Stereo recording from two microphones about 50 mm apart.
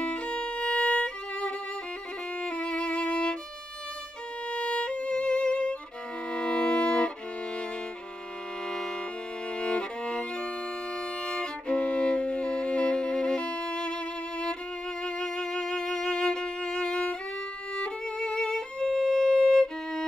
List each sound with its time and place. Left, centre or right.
0.0 s violin: left
2.4 s music: left
4.5 s violin: left
6.3 s music: centre
9.6 s music: left
11.2 s violin: centre
15.0 s music: centre
17.7 s violin: left